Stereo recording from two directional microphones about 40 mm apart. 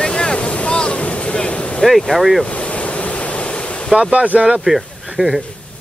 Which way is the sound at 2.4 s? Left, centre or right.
Left.